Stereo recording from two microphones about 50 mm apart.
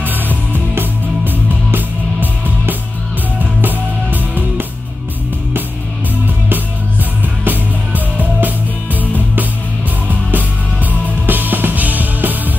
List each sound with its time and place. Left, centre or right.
0.0 s music: right
7.4 s music: right